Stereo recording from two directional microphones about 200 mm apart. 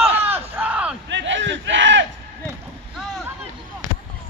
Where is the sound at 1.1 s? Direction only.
65° right (ahead or behind).